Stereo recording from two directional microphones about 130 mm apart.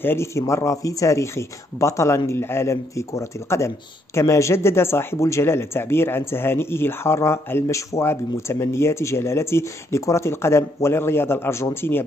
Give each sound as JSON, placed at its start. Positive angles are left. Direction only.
{"t": 0.0, "sound": "speech", "side_deg": 20}